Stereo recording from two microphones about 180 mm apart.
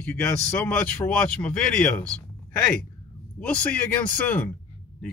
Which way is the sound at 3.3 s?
10° left (ahead or behind).